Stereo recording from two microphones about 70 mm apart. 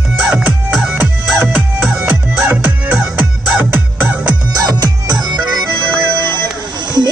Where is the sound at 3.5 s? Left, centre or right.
Right.